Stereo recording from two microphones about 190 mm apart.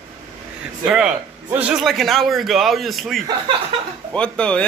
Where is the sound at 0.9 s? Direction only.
5° right (ahead or behind).